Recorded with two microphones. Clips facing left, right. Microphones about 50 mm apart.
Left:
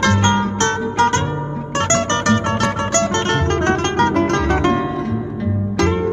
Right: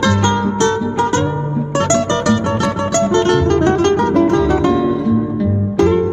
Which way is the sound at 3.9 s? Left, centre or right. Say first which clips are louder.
Right 3 dB; left.